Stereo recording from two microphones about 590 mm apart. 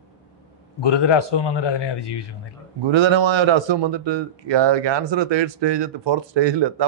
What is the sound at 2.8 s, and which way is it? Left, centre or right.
A man's voice, right.